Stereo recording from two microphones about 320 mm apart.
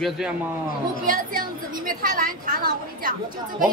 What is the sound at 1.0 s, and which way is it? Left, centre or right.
A woman's voice, right.